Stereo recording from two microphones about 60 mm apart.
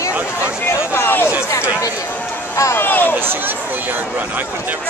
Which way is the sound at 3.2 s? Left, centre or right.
Right.